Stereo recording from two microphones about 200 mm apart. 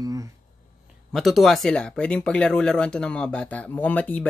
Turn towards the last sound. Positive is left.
turn(degrees=10)  # may be behind; listen again after turning